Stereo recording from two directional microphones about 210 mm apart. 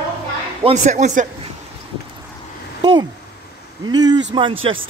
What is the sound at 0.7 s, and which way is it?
Speech, 35° right (ahead or behind).